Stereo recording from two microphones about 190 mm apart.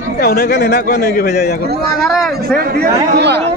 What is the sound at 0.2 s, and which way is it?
Speech, 55° left (ahead or behind).